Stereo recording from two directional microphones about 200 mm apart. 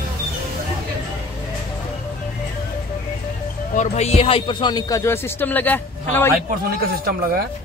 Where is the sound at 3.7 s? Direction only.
35° left (ahead or behind); by 6.3 s 10° left (ahead or behind).